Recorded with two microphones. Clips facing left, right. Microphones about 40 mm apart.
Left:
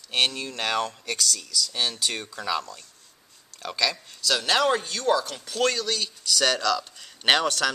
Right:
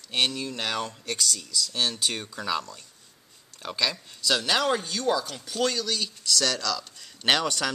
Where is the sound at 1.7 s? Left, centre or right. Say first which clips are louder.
Right 1 dB; centre.